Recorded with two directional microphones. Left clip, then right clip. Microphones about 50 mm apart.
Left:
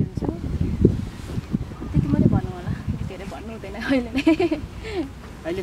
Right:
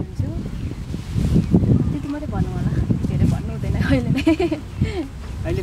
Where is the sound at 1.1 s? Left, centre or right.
Right.